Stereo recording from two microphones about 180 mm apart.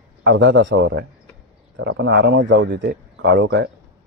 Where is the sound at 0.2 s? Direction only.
90° right.